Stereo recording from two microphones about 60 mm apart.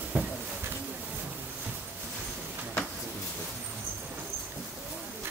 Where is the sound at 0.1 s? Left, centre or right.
Right.